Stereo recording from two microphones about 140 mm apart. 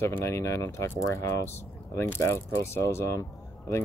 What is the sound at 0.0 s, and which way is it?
Speech, 20° left (ahead or behind).